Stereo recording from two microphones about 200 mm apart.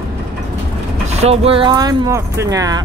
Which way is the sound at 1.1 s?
30° right (ahead or behind).